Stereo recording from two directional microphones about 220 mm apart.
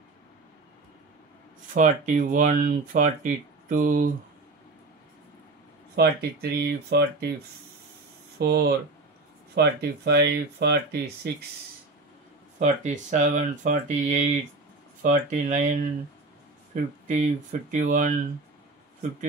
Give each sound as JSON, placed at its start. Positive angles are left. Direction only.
{"t": 1.7, "sound": "speech", "side_deg": -35}
{"t": 5.9, "sound": "speech", "side_deg": -45}
{"t": 8.4, "sound": "speech", "side_deg": -45}
{"t": 12.5, "sound": "speech", "side_deg": -35}
{"t": 17.2, "sound": "speech", "side_deg": -35}